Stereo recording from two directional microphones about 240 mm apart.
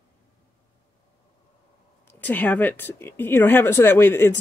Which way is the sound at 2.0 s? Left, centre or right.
Centre.